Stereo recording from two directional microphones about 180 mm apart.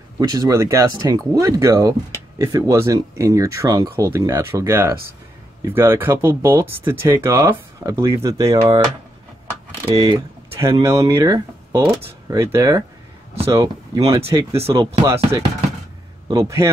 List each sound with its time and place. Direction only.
0.2 s speech: 20° right (ahead or behind)
9.8 s speech: 20° right (ahead or behind)
16.3 s speech: 15° right (ahead or behind)